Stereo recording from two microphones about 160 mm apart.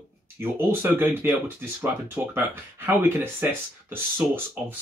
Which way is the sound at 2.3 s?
15° right (ahead or behind).